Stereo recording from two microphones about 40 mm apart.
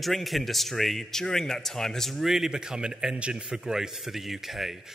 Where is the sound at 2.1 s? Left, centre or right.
Centre.